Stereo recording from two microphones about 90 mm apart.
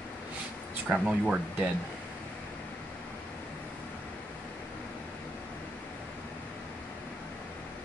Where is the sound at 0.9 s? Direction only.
5° right (ahead or behind).